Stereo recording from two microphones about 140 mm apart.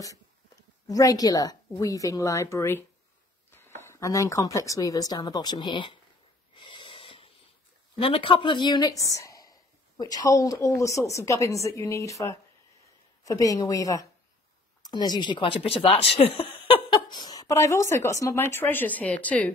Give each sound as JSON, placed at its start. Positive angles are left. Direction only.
{"t": 0.8, "sound": "speech", "side_deg": 25}
{"t": 3.8, "sound": "speech", "side_deg": 20}
{"t": 6.5, "sound": "snort", "side_deg": 35}
{"t": 7.9, "sound": "speech", "side_deg": 40}